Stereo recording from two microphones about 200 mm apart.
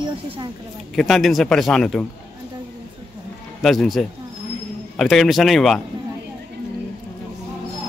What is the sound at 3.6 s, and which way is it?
Speech, centre (ahead or behind).